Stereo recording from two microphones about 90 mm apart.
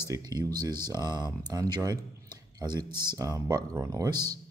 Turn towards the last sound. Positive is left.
turn(degrees=-50)  # may be behind; listen again after turning